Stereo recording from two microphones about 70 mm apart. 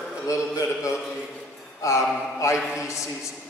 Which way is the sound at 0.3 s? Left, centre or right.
Left.